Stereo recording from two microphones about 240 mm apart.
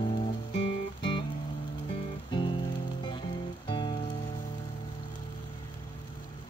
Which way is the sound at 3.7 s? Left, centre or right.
Centre.